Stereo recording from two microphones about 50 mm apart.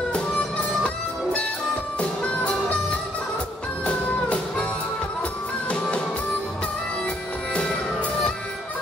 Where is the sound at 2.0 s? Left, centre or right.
Left.